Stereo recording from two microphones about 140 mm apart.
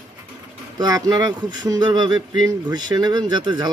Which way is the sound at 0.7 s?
25° right (ahead or behind).